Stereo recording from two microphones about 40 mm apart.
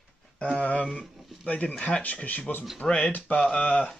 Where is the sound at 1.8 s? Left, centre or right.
Left.